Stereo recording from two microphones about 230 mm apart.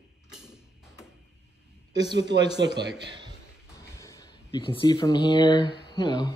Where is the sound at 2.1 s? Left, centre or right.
Right.